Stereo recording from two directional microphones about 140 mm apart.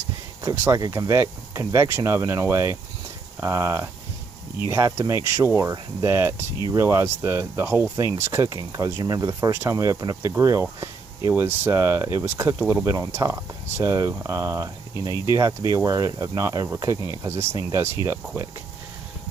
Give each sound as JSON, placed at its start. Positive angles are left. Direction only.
{"t": 0.4, "sound": "speech", "side_deg": -25}
{"t": 15.0, "sound": "speech", "side_deg": 35}
{"t": 15.2, "sound": "speech", "side_deg": -20}